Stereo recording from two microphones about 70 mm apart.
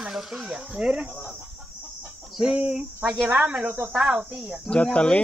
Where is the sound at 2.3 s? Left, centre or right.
Centre.